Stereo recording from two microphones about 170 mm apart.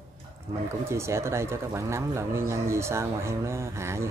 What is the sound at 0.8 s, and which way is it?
Speech, 15° right (ahead or behind).